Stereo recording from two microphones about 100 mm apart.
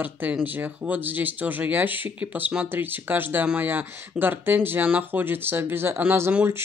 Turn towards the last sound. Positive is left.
turn(degrees=-15)  # may be behind; listen again after turning